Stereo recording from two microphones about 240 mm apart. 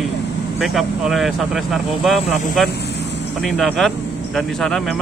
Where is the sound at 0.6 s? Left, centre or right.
Centre.